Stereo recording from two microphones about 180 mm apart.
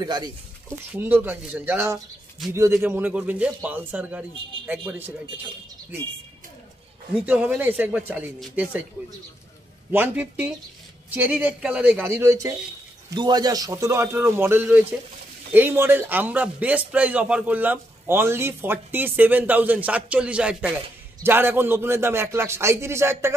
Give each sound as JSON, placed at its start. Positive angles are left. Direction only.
{"t": 0.0, "sound": "speech", "side_deg": -25}
{"t": 0.9, "sound": "a man's voice", "side_deg": -10}
{"t": 7.2, "sound": "a man's voice", "side_deg": -10}
{"t": 9.8, "sound": "a man's voice", "side_deg": -10}